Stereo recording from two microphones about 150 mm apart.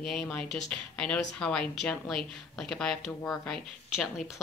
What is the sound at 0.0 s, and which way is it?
A woman's voice, centre (ahead or behind).